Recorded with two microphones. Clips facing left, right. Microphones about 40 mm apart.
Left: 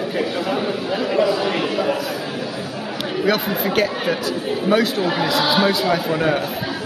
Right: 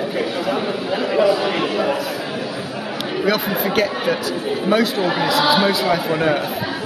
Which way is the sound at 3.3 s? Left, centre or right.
Centre.